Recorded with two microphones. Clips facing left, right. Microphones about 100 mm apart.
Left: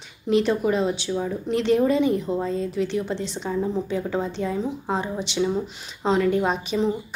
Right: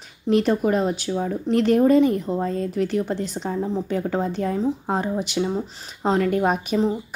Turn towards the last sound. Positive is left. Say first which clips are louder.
# right 2 dB
turn(degrees=-45)  # may be behind; listen again after turning